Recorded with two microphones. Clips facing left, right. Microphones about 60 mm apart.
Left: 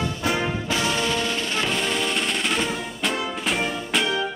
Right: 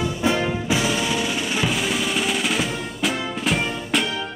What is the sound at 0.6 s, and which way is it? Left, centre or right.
Drum roll, centre.